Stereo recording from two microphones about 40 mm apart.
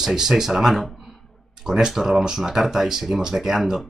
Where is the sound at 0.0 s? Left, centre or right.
Centre.